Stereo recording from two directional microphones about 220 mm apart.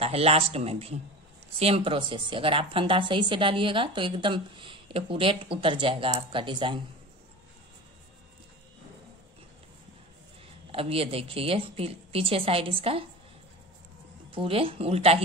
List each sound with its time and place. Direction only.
0.0 s a woman's voice: 25° right (ahead or behind)
10.7 s a woman's voice: 25° right (ahead or behind)
14.3 s a woman's voice: 25° right (ahead or behind)